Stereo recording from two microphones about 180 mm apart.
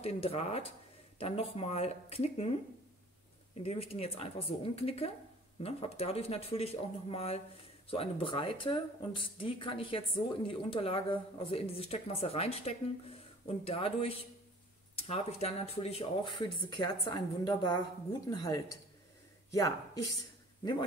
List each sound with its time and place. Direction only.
0.0 s speech: 35° left (ahead or behind)
3.6 s speech: 35° left (ahead or behind); by 20.1 s 20° left (ahead or behind)